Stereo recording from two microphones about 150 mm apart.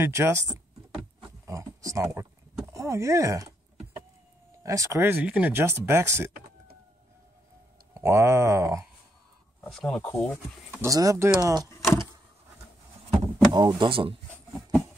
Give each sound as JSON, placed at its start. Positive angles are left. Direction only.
{"t": 0.0, "sound": "speech", "side_deg": -15}
{"t": 1.4, "sound": "a sound", "side_deg": -20}
{"t": 2.7, "sound": "speech", "side_deg": -20}
{"t": 4.6, "sound": "speech", "side_deg": -20}
{"t": 7.9, "sound": "speech", "side_deg": -20}
{"t": 9.7, "sound": "speech", "side_deg": 5}
{"t": 10.7, "sound": "speech", "side_deg": -20}
{"t": 13.1, "sound": "power windows", "side_deg": -30}